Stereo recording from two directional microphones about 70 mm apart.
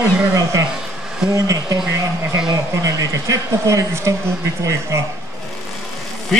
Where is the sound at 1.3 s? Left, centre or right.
Right.